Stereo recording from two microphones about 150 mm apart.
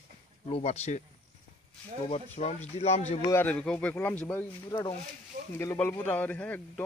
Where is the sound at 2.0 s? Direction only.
45° left (ahead or behind).